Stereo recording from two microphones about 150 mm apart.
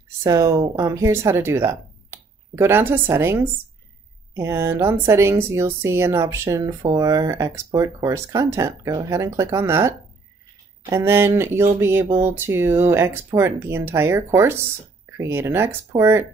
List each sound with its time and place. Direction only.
0.2 s a woman's voice: 20° right (ahead or behind)